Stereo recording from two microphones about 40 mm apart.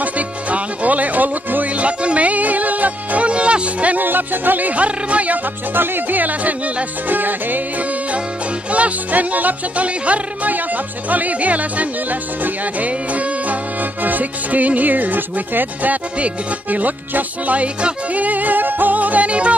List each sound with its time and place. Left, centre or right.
0.0 s music: right
4.0 s music: right
5.8 s music: right
7.2 s music: right
8.7 s music: right